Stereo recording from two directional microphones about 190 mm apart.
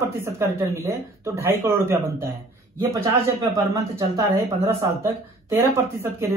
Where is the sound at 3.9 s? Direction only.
15° right (ahead or behind).